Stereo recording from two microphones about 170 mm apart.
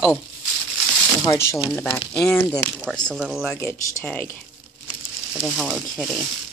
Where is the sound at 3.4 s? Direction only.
15° left (ahead or behind).